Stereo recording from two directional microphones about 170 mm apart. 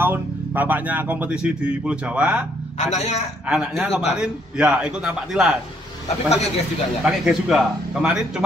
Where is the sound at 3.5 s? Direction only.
5° right (ahead or behind).